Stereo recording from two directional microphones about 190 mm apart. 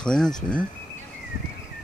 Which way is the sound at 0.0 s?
5° left (ahead or behind).